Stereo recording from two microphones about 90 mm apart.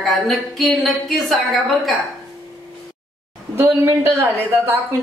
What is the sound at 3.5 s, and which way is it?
Speech, 25° right (ahead or behind).